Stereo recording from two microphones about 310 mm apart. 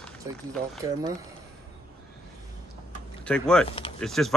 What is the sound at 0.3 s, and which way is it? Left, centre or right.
Speech, centre.